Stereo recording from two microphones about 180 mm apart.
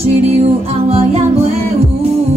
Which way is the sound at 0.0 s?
35° right (ahead or behind).